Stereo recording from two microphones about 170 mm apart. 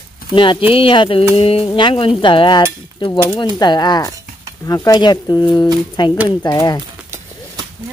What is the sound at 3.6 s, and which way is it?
Speech, 25° left (ahead or behind).